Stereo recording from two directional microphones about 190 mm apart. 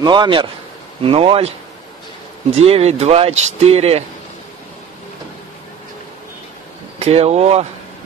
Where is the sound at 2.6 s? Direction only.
30° right (ahead or behind).